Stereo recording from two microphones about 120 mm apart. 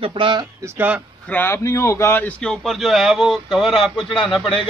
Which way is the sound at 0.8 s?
10° right (ahead or behind).